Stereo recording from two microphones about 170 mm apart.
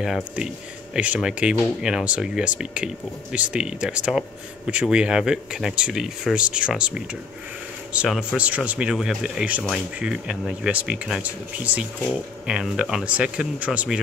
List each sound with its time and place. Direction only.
0.0 s speech: centre (ahead or behind)